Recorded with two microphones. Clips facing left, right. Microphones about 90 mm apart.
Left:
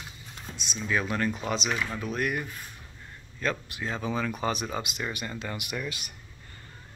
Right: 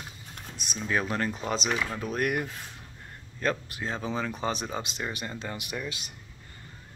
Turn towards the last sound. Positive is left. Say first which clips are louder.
# left 1 dB
turn(degrees=-25)  # may be behind; listen again after turning